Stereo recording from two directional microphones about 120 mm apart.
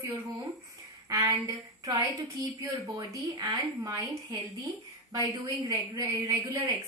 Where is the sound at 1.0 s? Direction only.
30° right (ahead or behind).